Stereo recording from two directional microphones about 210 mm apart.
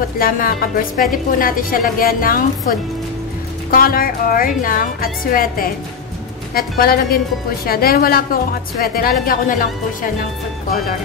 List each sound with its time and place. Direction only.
0.2 s a woman's voice: 45° left (ahead or behind)